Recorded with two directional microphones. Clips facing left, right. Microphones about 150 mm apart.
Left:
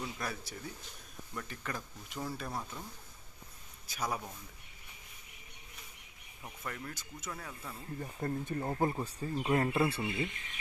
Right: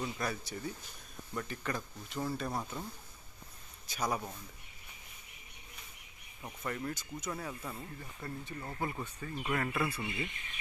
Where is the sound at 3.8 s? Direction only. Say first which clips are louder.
Right 2 dB; 5° left (ahead or behind).